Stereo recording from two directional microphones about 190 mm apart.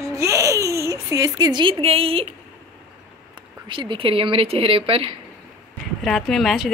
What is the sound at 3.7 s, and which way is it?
Speech, 25° right (ahead or behind).